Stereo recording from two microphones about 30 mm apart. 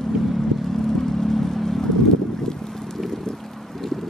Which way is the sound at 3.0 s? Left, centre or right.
Centre.